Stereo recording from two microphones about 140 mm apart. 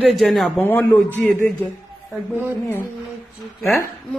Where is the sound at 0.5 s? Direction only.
15° left (ahead or behind).